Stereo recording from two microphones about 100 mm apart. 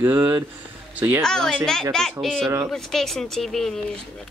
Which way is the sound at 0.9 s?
20° right (ahead or behind).